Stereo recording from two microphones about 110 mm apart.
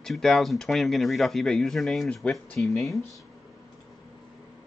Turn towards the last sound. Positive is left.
turn(degrees=0)  # may be behind; listen again after turning